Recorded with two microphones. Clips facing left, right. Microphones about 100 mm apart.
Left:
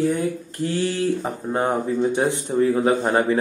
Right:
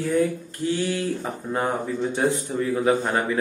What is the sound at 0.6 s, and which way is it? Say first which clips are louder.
Speech: left 2 dB; 30° left (ahead or behind).